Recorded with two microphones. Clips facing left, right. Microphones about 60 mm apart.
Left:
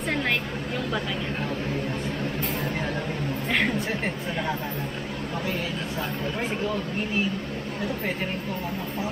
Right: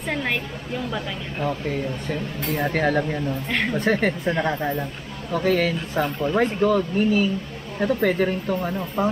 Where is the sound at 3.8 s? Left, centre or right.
Right.